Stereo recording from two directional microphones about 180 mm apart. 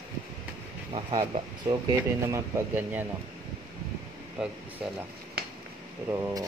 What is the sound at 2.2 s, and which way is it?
Speech, 15° right (ahead or behind).